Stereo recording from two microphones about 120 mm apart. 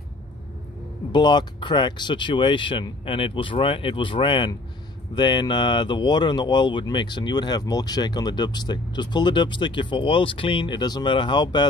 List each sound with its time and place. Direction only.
1.1 s speech: 40° left (ahead or behind)